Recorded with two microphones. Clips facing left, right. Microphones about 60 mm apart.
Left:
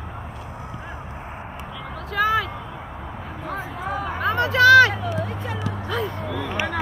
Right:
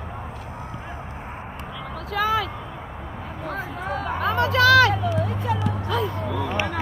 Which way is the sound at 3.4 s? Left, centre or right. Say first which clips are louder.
Even; centre.